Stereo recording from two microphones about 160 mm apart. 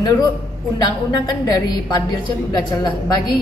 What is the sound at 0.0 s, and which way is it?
A woman's voice, 25° left (ahead or behind).